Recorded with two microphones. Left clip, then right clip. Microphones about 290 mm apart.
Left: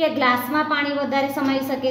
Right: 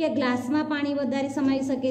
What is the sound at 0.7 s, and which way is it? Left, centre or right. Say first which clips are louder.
A woman's voice: left 5 dB; right.